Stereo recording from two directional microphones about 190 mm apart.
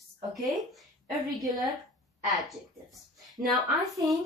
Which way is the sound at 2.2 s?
Centre (ahead or behind).